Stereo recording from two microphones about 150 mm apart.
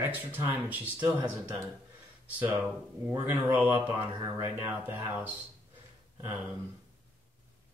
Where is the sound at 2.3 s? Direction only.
10° right (ahead or behind).